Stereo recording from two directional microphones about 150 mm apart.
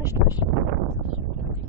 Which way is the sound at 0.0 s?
15° right (ahead or behind).